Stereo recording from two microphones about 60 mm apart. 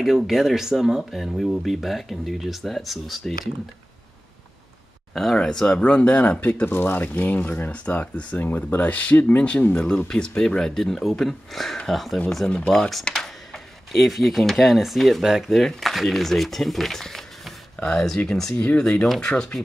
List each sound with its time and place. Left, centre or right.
0.0 s speech: centre
5.1 s speech: centre
18.1 s speech: centre